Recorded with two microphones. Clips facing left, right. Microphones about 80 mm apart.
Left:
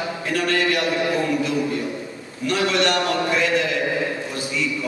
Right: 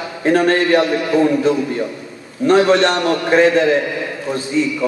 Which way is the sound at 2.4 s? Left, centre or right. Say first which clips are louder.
Right 8 dB; right.